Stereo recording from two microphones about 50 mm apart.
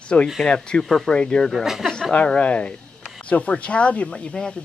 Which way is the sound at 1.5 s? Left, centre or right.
Centre.